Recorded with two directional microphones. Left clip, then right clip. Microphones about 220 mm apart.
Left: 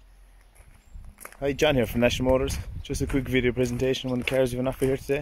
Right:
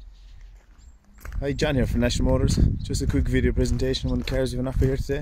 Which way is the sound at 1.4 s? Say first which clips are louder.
Left 2 dB; centre (ahead or behind).